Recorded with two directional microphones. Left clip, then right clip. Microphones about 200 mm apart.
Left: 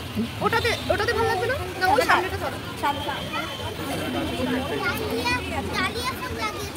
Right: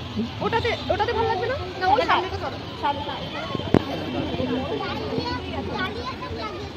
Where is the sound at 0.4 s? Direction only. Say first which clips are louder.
Left 1 dB; 55° left (ahead or behind).